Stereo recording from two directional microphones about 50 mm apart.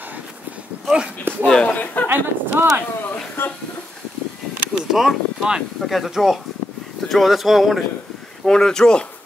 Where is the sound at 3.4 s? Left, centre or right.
Left.